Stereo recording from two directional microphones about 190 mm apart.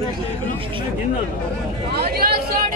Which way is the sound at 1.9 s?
55° right (ahead or behind).